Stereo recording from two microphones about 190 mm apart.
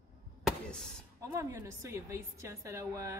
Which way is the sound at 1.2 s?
15° right (ahead or behind).